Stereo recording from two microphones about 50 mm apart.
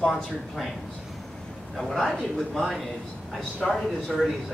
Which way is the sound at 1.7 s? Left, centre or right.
Centre.